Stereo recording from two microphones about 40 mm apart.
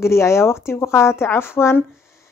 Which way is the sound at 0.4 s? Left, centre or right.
Left.